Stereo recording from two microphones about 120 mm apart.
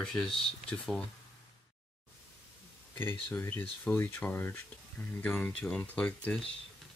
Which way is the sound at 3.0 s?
15° left (ahead or behind).